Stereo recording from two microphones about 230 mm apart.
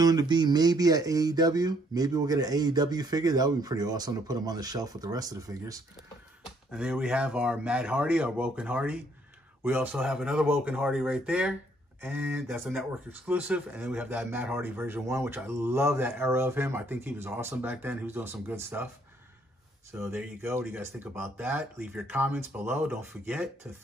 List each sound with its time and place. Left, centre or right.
0.0 s speech: centre
6.7 s speech: centre
20.0 s speech: centre